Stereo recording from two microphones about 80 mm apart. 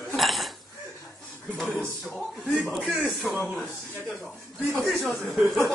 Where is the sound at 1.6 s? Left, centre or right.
Centre; by 4.7 s right.